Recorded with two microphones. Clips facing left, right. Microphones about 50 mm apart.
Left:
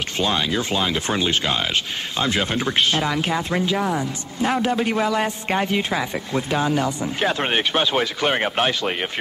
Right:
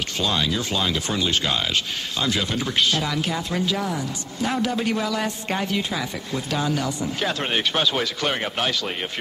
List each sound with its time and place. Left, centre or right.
0.2 s a man's voice: left